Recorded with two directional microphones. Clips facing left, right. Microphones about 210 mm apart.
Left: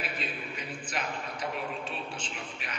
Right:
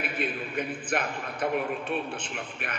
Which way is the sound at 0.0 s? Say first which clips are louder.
Right 6 dB; 55° right (ahead or behind).